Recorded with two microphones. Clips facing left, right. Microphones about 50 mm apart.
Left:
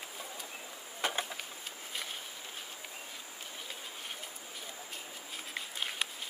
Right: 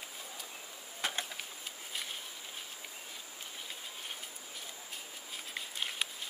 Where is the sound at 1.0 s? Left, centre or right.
Centre.